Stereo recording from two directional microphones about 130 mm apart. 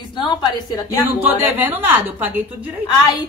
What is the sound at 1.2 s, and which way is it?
A woman's voice, 15° right (ahead or behind).